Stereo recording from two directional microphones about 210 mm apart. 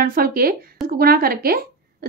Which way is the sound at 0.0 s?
45° right (ahead or behind).